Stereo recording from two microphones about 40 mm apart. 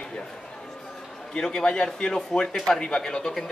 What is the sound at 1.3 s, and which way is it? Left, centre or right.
A man's voice, left.